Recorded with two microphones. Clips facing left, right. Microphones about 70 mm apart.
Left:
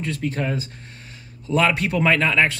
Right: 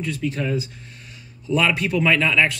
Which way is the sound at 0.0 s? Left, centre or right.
Left.